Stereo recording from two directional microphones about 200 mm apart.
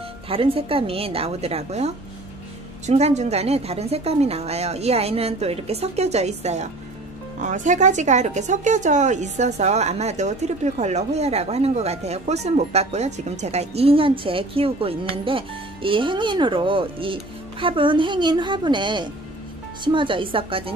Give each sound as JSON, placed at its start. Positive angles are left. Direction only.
{"t": 0.3, "sound": "a woman's voice", "side_deg": -30}
{"t": 2.9, "sound": "a woman's voice", "side_deg": -35}